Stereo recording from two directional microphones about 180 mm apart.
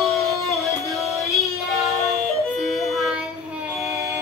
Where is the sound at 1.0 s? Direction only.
15° left (ahead or behind).